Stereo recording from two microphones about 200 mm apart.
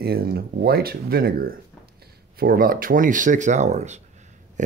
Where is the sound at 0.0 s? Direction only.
50° right (ahead or behind).